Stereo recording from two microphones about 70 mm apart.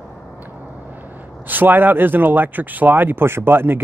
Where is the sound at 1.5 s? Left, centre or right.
Right.